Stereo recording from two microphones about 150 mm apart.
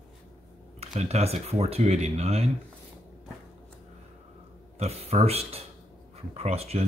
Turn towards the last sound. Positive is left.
turn(degrees=-45)  # may be behind; listen again after turning